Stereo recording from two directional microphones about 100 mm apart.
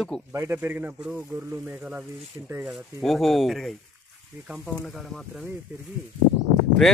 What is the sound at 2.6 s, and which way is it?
Speech, 5° right (ahead or behind).